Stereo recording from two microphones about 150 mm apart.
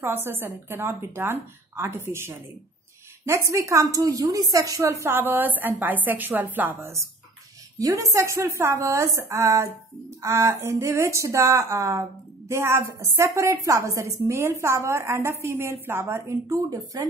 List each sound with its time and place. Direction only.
0.0 s speech: 15° right (ahead or behind)